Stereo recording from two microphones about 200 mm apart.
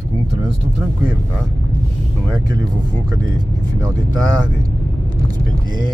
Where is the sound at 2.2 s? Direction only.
20° right (ahead or behind).